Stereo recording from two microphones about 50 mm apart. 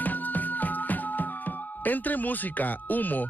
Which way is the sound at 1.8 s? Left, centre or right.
Left.